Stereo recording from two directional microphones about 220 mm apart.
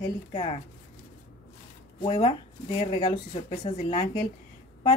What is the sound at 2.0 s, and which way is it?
Speech, 25° left (ahead or behind).